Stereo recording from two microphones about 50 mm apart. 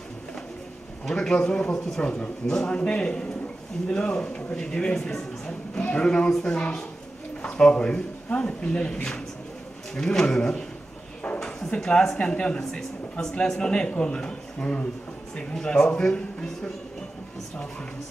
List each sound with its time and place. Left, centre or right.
1.0 s a man's voice: centre
9.9 s a man's voice: centre